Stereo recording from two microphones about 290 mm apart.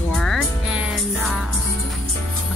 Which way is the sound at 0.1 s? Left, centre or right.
Centre.